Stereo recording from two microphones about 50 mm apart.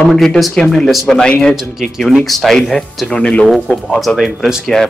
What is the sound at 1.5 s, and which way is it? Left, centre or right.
Speech, centre.